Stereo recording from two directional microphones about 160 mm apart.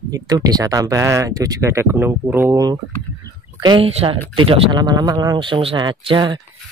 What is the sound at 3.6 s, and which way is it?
Speech, 30° right (ahead or behind).